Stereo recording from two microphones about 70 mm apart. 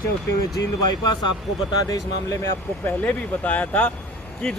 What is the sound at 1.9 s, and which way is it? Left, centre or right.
Speech, left.